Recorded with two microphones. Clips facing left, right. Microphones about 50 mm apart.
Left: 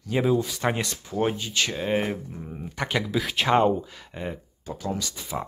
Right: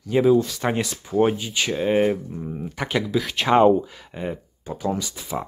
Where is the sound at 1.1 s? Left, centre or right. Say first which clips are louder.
Right 6 dB; centre.